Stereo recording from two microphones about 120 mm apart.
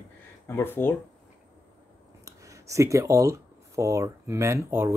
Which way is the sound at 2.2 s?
25° right (ahead or behind).